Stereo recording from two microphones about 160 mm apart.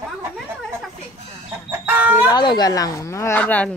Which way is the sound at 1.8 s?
10° right (ahead or behind).